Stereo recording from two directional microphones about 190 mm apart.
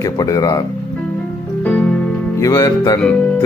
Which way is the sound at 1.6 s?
5° left (ahead or behind).